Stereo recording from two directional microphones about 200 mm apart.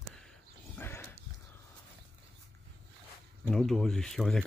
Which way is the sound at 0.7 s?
10° left (ahead or behind).